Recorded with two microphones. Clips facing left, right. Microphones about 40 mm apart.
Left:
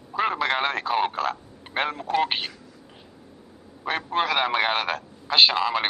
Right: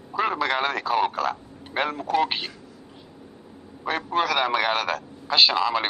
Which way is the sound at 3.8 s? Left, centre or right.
Centre.